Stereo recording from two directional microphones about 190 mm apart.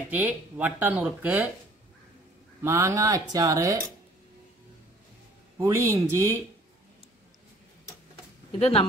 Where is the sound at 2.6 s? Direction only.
15° right (ahead or behind).